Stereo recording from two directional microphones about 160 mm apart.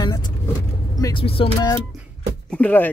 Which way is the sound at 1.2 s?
35° left (ahead or behind).